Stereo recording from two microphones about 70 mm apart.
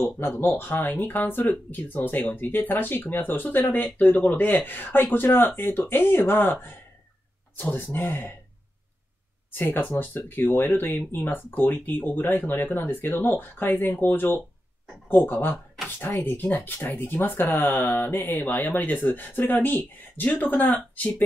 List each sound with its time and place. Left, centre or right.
0.4 s speech: left
9.5 s speech: left